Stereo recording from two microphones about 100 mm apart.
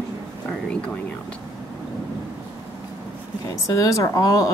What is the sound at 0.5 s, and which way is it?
Speech, 10° left (ahead or behind).